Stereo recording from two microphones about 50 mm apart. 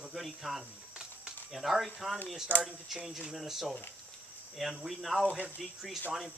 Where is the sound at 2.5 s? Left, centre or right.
Left.